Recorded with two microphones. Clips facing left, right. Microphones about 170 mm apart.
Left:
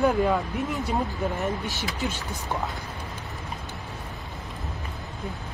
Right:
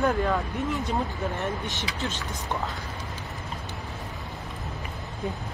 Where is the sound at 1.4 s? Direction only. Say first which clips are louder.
Left 2 dB; 10° left (ahead or behind).